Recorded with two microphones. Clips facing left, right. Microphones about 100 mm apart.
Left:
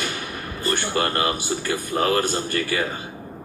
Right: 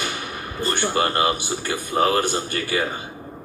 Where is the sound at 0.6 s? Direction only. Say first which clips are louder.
Right 1 dB; 20° right (ahead or behind).